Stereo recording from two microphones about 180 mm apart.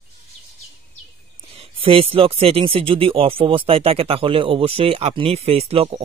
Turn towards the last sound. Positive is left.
turn(degrees=-35)  # may be behind; listen again after turning